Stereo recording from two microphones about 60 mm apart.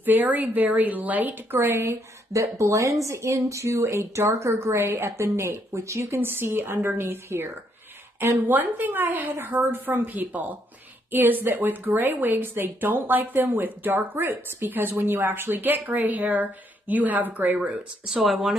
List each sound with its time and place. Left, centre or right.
0.0 s speech: right
1.6 s speech: right
2.3 s a woman's voice: right
8.5 s a woman's voice: right
18.0 s speech: centre